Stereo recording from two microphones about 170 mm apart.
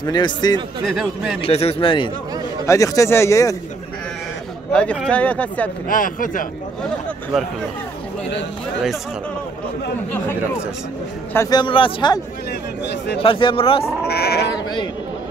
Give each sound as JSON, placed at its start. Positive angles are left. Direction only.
{"t": 0.0, "sound": "speech", "side_deg": 25}
{"t": 1.4, "sound": "speech", "side_deg": 35}
{"t": 2.6, "sound": "speech", "side_deg": 20}
{"t": 4.7, "sound": "speech", "side_deg": 5}
{"t": 5.9, "sound": "speech", "side_deg": 55}
{"t": 10.1, "sound": "speech", "side_deg": 15}
{"t": 11.5, "sound": "speech", "side_deg": 30}
{"t": 13.2, "sound": "speech", "side_deg": 30}
{"t": 14.0, "sound": "speech", "side_deg": 70}